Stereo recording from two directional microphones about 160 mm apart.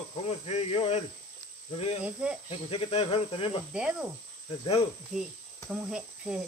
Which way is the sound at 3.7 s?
5° right (ahead or behind).